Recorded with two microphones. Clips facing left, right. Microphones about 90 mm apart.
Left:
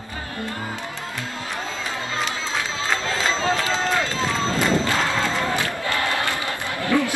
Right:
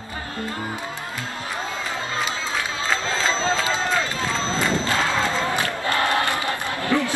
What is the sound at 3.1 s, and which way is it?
Run, 20° right (ahead or behind).